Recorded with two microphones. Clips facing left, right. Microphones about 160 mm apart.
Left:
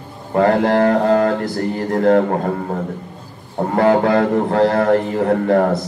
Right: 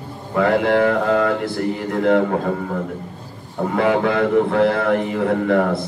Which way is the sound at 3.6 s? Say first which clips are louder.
Left 3 dB; 40° left (ahead or behind).